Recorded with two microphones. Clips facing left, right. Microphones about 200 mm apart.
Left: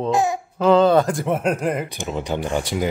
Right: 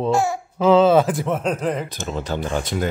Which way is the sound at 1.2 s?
10° left (ahead or behind).